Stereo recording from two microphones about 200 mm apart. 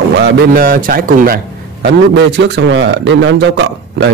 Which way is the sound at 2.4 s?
60° right (ahead or behind).